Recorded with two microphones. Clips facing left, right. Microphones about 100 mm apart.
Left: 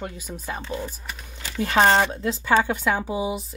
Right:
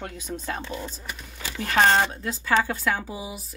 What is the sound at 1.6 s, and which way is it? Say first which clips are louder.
Speech: left 2 dB; 30° left (ahead or behind).